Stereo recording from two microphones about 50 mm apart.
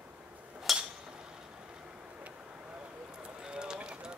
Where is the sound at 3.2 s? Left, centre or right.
Centre.